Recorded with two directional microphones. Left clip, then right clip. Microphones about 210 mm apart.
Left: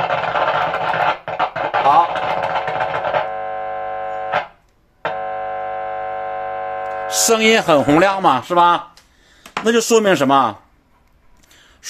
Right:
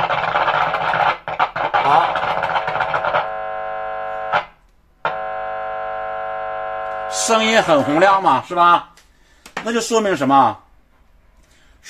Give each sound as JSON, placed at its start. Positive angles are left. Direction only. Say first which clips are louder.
{"t": 0.0, "sound": "music", "louder": "even", "side_deg": 0}
{"t": 5.2, "sound": "siren", "louder": "left 1 dB", "side_deg": 0}
{"t": 7.2, "sound": "speech", "louder": "left 1 dB", "side_deg": 45}